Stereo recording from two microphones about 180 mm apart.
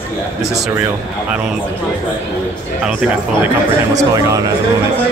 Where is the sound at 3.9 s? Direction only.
20° right (ahead or behind).